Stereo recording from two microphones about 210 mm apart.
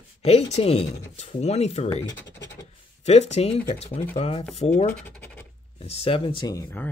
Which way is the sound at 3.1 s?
30° left (ahead or behind).